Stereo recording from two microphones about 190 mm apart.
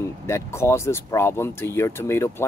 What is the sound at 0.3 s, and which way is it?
Speech, 15° left (ahead or behind).